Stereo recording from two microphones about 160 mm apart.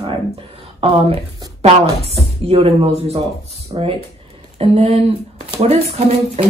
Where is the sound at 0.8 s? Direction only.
35° right (ahead or behind).